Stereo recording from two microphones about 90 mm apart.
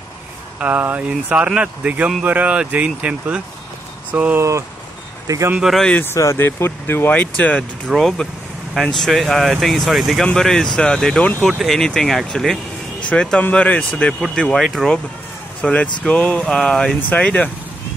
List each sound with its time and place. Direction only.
0.6 s speech: 15° right (ahead or behind)
4.4 s speech: 35° right (ahead or behind)
5.6 s speech: centre (ahead or behind)
5.9 s speech: 20° left (ahead or behind)
6.1 s speech: 30° left (ahead or behind); by 7.9 s 15° left (ahead or behind)
7.9 s speech: 5° left (ahead or behind)
15.6 s speech: 15° left (ahead or behind)